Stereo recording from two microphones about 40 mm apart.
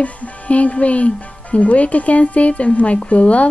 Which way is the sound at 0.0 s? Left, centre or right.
Left.